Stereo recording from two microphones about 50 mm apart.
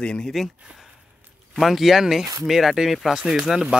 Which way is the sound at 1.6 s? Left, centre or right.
Centre.